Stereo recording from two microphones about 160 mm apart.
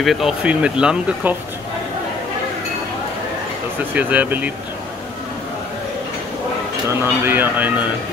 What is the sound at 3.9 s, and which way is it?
Speech, 10° right (ahead or behind).